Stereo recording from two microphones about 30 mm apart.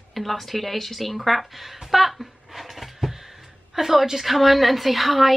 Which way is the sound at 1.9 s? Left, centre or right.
Centre.